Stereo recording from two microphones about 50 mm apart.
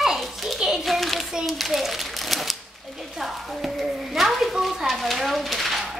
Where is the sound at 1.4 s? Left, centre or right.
Centre.